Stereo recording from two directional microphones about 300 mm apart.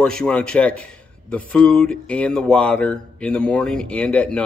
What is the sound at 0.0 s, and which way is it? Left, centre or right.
Speech, centre.